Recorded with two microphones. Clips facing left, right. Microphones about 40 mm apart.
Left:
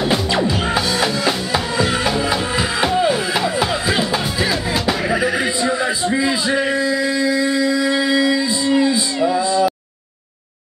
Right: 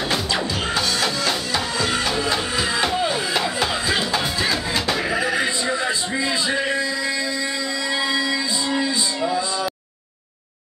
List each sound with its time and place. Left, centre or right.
0.1 s music: centre